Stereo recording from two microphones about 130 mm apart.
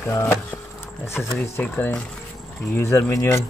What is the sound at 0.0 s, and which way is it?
Speech, 20° left (ahead or behind).